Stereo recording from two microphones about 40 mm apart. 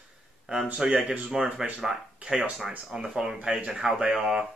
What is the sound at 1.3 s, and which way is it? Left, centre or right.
Speech, centre.